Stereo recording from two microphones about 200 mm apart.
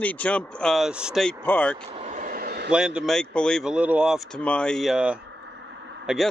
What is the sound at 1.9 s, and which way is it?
Vehicle, 35° right (ahead or behind).